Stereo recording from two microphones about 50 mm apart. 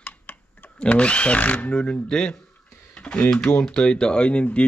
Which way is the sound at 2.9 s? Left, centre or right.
Centre.